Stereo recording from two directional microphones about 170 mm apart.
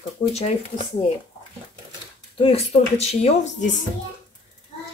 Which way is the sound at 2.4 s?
35° left (ahead or behind).